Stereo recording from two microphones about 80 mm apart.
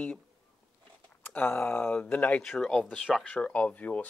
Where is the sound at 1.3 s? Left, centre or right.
Left.